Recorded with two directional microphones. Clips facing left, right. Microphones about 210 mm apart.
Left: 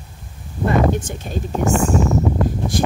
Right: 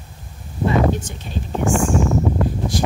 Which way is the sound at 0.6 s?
50° left (ahead or behind).